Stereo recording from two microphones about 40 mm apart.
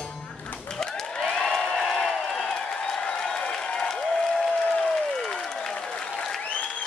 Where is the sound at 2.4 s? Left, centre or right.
Centre.